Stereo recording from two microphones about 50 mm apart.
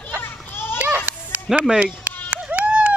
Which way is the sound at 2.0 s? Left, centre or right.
Right.